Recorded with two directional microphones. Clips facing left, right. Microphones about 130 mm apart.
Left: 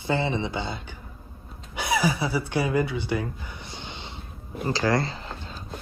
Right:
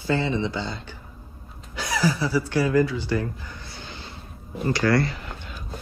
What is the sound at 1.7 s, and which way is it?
Speech, 15° left (ahead or behind).